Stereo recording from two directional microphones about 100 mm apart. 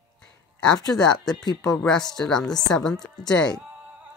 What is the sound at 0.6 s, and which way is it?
Speech, 10° left (ahead or behind).